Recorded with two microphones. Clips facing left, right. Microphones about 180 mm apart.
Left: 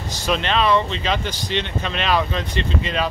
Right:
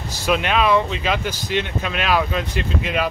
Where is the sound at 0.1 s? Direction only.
10° right (ahead or behind).